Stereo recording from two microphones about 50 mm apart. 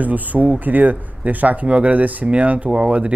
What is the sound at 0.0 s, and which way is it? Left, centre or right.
Speech, right.